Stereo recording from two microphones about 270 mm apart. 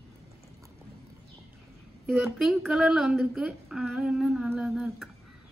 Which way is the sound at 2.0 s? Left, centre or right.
Centre.